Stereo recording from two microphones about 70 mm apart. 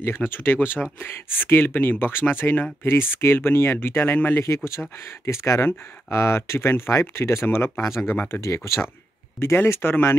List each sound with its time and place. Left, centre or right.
0.0 s speech: left
4.6 s speech: left
8.4 s speech: left